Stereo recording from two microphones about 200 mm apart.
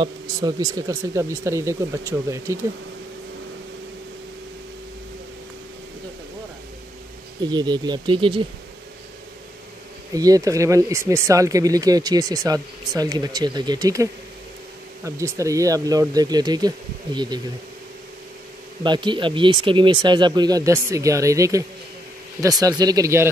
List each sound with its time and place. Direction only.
0.0 s speech: 20° right (ahead or behind)
7.4 s speech: 20° right (ahead or behind)
10.1 s speech: 15° right (ahead or behind)
15.0 s speech: 15° right (ahead or behind)
18.8 s speech: 20° right (ahead or behind)